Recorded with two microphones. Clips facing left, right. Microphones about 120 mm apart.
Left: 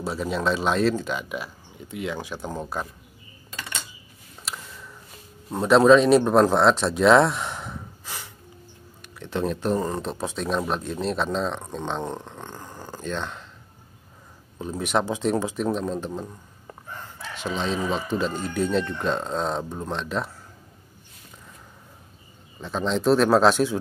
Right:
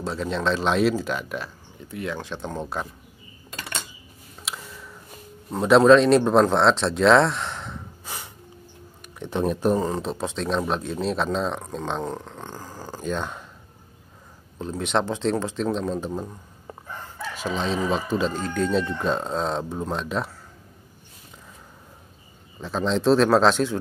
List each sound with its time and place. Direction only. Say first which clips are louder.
0.0 s speech: even; 5° left (ahead or behind)
1.9 s speech: even; 15° left (ahead or behind)
4.5 s a sound: right 1 dB; 5° right (ahead or behind)
5.5 s speech: right 1 dB; centre (ahead or behind)
8.0 s snort: right 1 dB; 15° right (ahead or behind)
9.0 s speech: right 2 dB; 15° right (ahead or behind)
9.9 s speech: right 1 dB; centre (ahead or behind)
12.0 s speech: right 1 dB; 20° left (ahead or behind)
12.4 s dog: right 1 dB; 10° right (ahead or behind)
14.6 s speech: even; 5° left (ahead or behind)
18.5 s speech: even; 5° left (ahead or behind)
22.6 s speech: right 1 dB; centre (ahead or behind)